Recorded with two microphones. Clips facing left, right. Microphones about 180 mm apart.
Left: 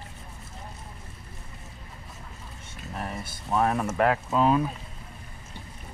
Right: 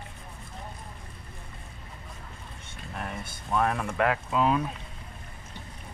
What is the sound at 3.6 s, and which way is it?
Speech, 30° left (ahead or behind).